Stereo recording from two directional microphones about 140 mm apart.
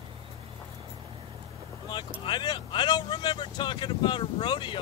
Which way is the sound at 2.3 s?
35° left (ahead or behind).